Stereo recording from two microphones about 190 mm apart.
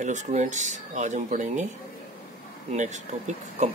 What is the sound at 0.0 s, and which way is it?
Speech, 40° right (ahead or behind).